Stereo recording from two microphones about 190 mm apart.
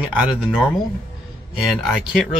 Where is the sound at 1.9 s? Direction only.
Centre (ahead or behind).